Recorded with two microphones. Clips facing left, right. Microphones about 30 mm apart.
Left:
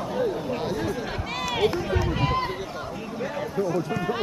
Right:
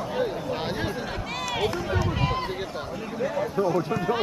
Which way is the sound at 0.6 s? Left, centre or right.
Right.